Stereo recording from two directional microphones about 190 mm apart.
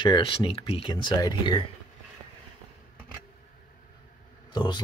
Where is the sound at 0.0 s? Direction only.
25° left (ahead or behind).